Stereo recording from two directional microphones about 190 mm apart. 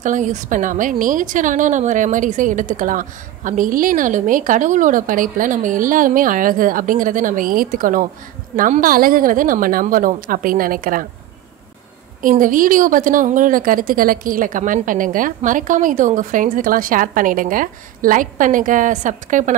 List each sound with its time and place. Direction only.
0.0 s a woman's voice: 40° right (ahead or behind)
12.2 s a woman's voice: 45° right (ahead or behind)